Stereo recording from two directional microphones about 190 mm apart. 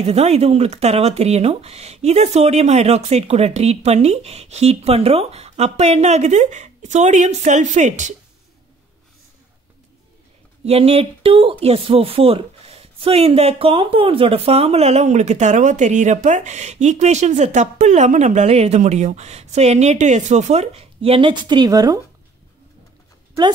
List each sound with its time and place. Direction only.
0.0 s speech: 35° right (ahead or behind)
10.6 s speech: 30° right (ahead or behind)